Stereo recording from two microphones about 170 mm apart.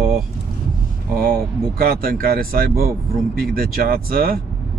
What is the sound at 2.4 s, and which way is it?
Speech, 60° right (ahead or behind).